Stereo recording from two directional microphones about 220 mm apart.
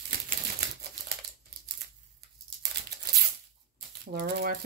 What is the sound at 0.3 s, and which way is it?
Typewriter, 45° right (ahead or behind).